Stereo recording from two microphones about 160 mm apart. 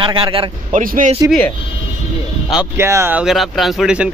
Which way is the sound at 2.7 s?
15° right (ahead or behind).